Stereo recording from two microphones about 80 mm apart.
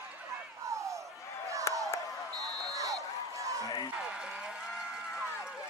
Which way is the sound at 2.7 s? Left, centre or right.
Right.